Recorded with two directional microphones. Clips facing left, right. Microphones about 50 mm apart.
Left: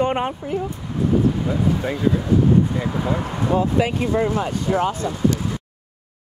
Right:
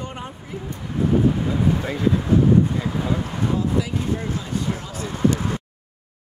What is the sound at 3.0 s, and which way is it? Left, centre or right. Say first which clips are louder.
Speech: left 2 dB; left.